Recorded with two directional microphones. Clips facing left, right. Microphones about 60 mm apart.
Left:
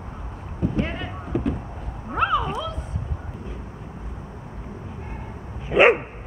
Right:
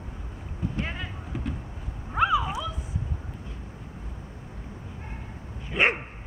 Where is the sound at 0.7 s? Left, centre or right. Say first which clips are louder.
Left 6 dB; centre.